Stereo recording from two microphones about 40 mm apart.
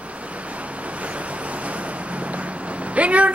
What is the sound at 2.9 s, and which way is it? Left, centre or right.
Speech, right.